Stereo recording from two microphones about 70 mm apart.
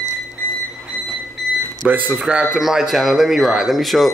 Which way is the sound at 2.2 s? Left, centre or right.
Centre.